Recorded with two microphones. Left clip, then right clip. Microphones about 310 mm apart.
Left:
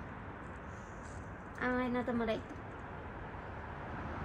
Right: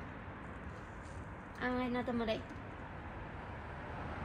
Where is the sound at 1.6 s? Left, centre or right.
Centre.